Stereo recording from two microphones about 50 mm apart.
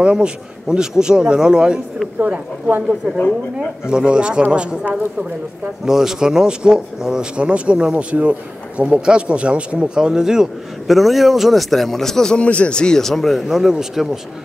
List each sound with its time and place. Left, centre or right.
0.0 s a man's voice: centre
2.1 s speech: right
3.9 s speech: centre
5.9 s speech: centre
10.9 s a man's voice: centre
12.4 s a man's voice: left; by 14.0 s centre